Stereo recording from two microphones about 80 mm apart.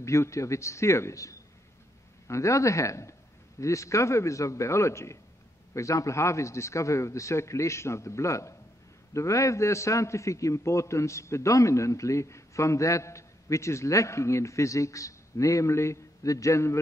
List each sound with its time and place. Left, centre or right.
0.0 s a man's voice: left